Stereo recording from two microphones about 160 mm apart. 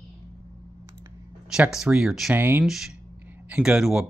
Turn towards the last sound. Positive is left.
turn(degrees=-5)  # may be behind; listen again after turning